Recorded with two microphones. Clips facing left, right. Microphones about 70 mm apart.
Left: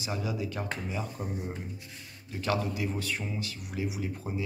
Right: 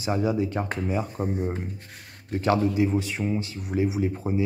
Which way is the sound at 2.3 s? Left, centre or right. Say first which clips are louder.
Right 9 dB; right.